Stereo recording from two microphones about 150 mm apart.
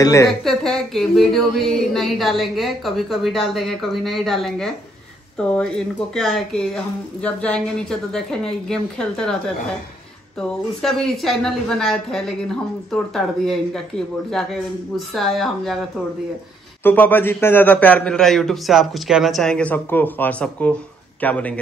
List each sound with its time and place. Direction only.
0.0 s speech: 20° left (ahead or behind)
0.4 s speech: centre (ahead or behind)
10.8 s speech: centre (ahead or behind)
16.8 s a man's voice: 10° left (ahead or behind)